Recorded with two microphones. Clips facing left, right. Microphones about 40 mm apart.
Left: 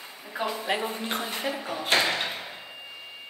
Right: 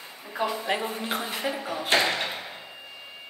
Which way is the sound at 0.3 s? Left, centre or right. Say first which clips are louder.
Right 1 dB; centre.